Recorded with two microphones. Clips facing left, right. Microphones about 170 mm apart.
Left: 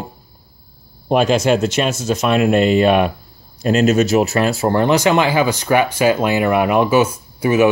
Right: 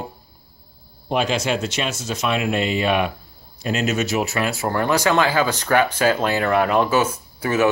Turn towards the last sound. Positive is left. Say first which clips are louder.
# left 6 dB
turn(degrees=15)  # may be behind; listen again after turning